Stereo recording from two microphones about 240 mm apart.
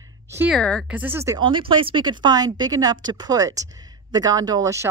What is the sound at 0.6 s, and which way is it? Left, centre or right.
Speech, centre.